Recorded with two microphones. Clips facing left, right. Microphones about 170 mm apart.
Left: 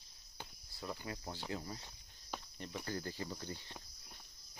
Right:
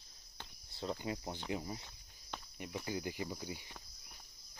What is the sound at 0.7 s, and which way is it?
Speech, 25° right (ahead or behind).